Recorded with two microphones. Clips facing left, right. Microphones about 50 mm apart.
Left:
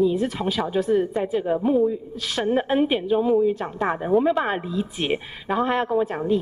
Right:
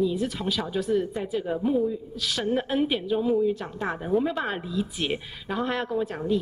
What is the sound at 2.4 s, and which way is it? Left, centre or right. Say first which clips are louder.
Speech: left 5 dB; left.